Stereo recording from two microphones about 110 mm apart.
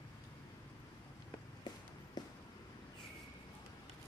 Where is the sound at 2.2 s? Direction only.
40° left (ahead or behind).